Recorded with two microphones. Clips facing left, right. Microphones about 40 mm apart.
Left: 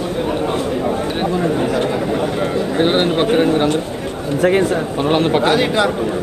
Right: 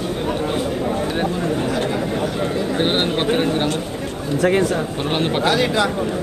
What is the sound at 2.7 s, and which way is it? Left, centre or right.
Speech, centre.